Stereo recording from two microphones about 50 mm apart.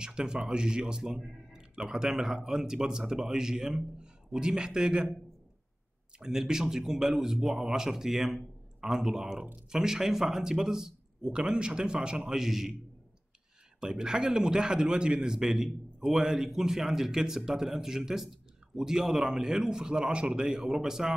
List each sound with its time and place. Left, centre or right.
0.0 s a man's voice: centre
6.1 s a man's voice: centre
13.7 s a man's voice: centre